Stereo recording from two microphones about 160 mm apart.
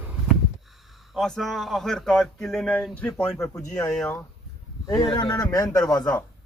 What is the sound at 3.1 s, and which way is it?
Speech, 20° left (ahead or behind).